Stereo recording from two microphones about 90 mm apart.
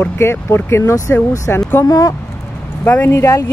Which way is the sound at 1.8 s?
40° left (ahead or behind).